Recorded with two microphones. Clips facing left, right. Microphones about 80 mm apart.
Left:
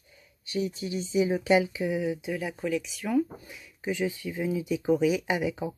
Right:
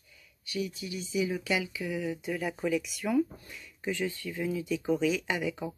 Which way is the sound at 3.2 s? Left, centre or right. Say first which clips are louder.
Even; centre.